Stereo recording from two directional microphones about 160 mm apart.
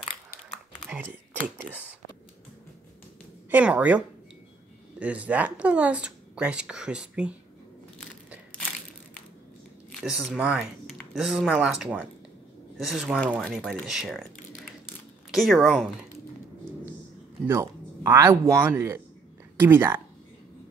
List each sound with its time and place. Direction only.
0.8 s speech: 10° right (ahead or behind)
3.4 s speech: 10° right (ahead or behind)
10.0 s speech: 5° right (ahead or behind)
17.5 s a woman's voice: 15° right (ahead or behind)